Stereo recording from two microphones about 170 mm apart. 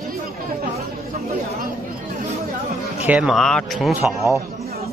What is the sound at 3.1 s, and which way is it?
Speech, 5° right (ahead or behind).